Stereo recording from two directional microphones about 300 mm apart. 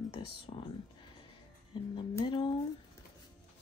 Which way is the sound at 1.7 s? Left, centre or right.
Centre.